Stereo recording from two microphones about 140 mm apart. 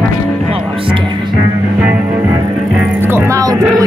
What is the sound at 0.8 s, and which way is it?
Speech, 35° right (ahead or behind).